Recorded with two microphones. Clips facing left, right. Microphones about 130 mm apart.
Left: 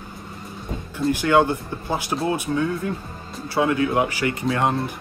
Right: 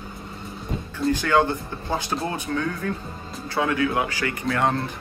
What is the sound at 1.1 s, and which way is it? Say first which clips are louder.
Speech: left 3 dB; 15° left (ahead or behind).